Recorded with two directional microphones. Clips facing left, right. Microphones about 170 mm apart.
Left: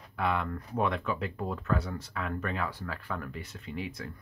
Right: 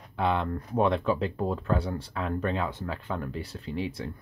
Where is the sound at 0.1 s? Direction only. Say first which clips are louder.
Right 4 dB; 25° right (ahead or behind).